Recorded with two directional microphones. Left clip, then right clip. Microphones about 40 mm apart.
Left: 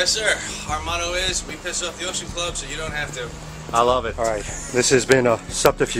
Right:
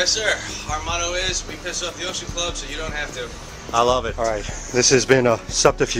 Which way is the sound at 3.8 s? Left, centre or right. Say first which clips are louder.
Even; right.